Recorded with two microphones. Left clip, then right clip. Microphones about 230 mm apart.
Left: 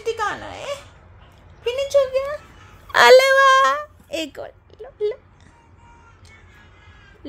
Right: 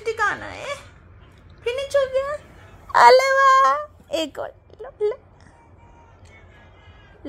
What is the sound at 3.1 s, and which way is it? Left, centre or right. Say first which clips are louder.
Speech: left 2 dB; left.